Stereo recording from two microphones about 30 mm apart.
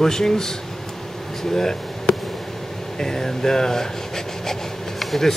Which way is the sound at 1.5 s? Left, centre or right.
Centre.